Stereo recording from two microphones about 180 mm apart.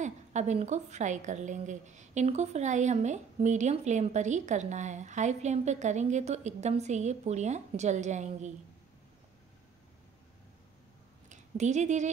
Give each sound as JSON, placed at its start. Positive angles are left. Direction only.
{"t": 0.0, "sound": "a woman's voice", "side_deg": -40}
{"t": 11.2, "sound": "speech", "side_deg": -40}